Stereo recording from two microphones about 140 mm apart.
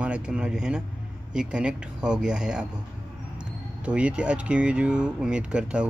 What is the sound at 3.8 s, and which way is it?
Speech, 10° right (ahead or behind).